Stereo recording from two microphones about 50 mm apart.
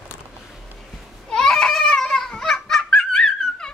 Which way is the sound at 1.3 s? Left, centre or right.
Centre.